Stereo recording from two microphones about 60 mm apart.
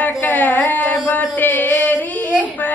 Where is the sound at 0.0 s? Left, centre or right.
Left.